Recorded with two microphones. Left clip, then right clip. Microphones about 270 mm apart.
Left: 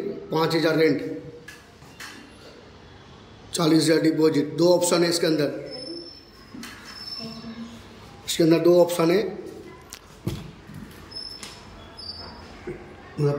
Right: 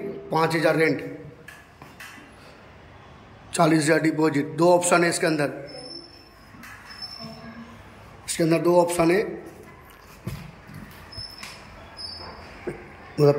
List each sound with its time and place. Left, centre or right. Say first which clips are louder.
0.3 s a man's voice: right 1 dB; centre
3.5 s a man's voice: even; centre
8.3 s a man's voice: left 3 dB; centre
13.1 s speech: right 7 dB; centre